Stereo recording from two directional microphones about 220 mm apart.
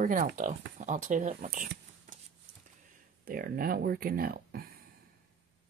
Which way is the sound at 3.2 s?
40° right (ahead or behind).